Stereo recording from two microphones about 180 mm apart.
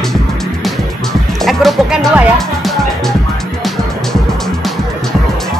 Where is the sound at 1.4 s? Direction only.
Centre (ahead or behind).